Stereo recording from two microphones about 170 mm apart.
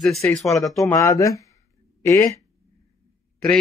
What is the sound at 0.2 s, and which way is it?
Speech, 10° left (ahead or behind).